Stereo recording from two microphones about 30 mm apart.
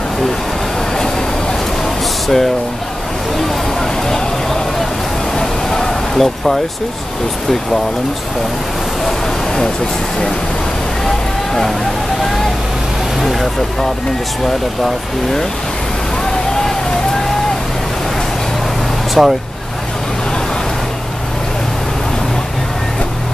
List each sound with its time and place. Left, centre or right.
2.2 s speech: centre
3.4 s a sound: centre
5.3 s vehicle: centre
6.2 s speech: centre
13.2 s vehicle: centre
19.2 s speech: centre